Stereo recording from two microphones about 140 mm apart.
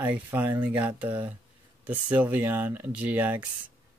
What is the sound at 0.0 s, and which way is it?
Speech, 10° right (ahead or behind).